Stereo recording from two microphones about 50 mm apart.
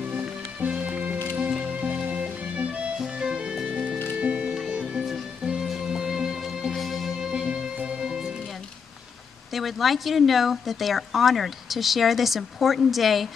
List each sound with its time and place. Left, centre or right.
0.6 s music: right
3.0 s music: centre
6.7 s music: centre
9.5 s speech: centre